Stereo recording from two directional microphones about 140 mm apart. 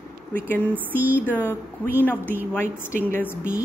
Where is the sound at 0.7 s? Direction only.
15° right (ahead or behind).